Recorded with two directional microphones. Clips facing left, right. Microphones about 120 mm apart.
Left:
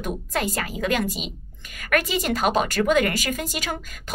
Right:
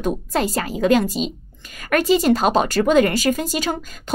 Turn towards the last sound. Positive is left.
turn(degrees=-30)  # may be behind; listen again after turning